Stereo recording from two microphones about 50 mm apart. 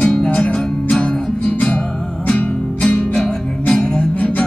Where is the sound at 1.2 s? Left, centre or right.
Centre.